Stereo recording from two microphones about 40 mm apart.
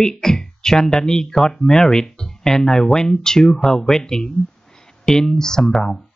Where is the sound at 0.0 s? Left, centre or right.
Centre.